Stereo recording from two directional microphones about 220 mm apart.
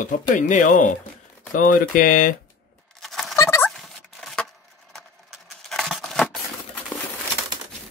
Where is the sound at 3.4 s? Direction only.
15° left (ahead or behind).